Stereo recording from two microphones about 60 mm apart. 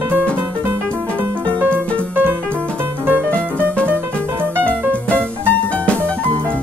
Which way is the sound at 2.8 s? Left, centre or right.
Right.